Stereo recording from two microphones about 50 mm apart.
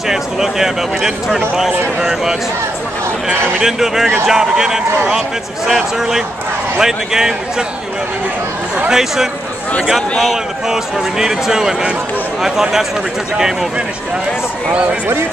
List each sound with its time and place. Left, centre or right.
0.1 s speech: centre
3.5 s speech: centre
8.9 s speech: centre
10.7 s speech: centre